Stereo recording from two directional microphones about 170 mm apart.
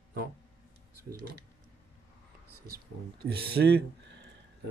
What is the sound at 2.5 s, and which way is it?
Speech, 65° right (ahead or behind).